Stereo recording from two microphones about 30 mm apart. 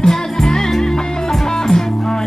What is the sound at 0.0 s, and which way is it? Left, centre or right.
Music, centre.